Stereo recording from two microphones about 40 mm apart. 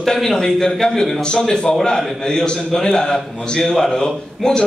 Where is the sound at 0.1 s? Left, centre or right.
Centre.